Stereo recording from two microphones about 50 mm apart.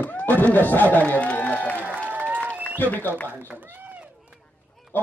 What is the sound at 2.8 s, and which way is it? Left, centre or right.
Speech, left.